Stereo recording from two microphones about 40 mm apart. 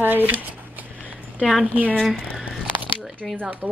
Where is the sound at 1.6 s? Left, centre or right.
Right.